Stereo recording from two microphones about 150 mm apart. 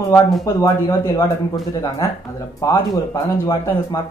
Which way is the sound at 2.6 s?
20° left (ahead or behind).